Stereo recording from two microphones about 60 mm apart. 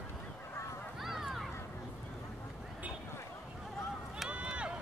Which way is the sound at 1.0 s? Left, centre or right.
Centre.